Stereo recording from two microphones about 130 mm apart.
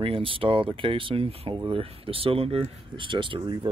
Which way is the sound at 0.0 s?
45° right (ahead or behind).